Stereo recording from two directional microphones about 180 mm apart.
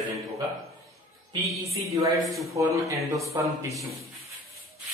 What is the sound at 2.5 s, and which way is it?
A woman's voice, 15° right (ahead or behind).